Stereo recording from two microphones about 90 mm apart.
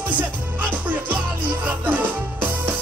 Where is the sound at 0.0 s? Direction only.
20° right (ahead or behind).